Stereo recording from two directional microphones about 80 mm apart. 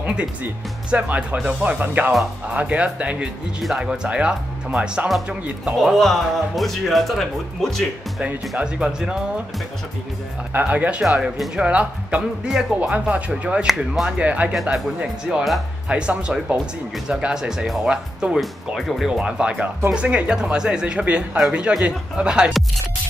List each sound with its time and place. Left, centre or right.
0.0 s speech: centre
5.8 s speech: centre
8.2 s speech: centre
10.5 s speech: centre
11.1 s speech: centre
13.7 s speech: centre
14.2 s speech: centre
14.5 s speech: centre
15.0 s speech: centre